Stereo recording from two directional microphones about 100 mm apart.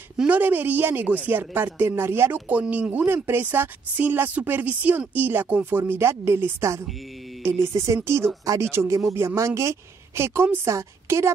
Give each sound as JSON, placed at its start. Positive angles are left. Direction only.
{"t": 0.2, "sound": "speech", "side_deg": -15}